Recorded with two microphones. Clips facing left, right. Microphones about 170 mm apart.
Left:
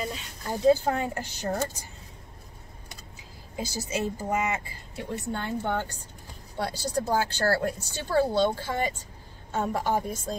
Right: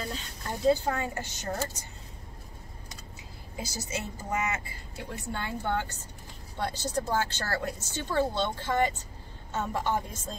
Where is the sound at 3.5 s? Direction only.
15° left (ahead or behind).